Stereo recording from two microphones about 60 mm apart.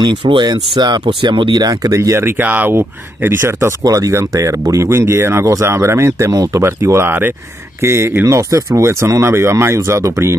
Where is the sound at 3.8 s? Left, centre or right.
Right.